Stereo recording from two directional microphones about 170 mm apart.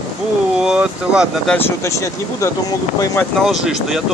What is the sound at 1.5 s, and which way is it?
Speech, 15° left (ahead or behind).